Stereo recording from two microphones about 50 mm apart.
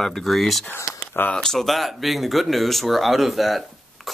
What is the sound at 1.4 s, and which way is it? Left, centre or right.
Speech, centre.